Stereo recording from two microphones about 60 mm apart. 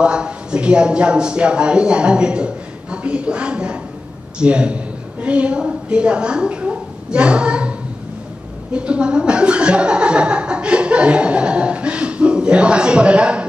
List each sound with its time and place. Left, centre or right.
0.0 s a woman's voice: centre
8.7 s speech: centre